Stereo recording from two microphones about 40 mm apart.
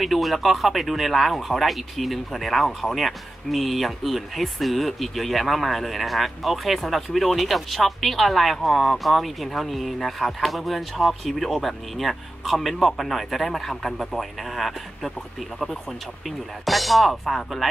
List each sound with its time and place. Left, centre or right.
0.0 s speech: centre
16.3 s speech: centre